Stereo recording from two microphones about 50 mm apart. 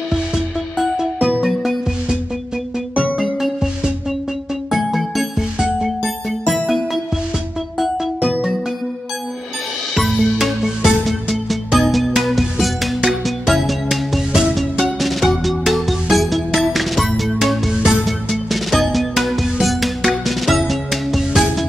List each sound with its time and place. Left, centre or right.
1.5 s music: centre
3.0 s music: centre
9.9 s music: centre
10.3 s music: centre